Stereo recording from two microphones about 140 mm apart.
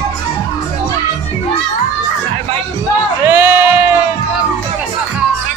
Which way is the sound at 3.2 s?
15° right (ahead or behind).